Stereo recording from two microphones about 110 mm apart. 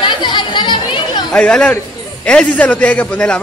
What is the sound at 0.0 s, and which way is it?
Chatter, 45° left (ahead or behind).